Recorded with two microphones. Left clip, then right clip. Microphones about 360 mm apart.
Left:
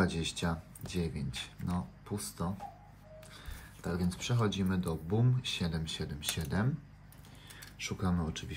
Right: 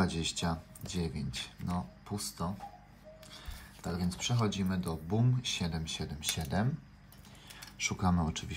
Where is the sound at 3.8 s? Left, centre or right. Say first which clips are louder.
Even; centre.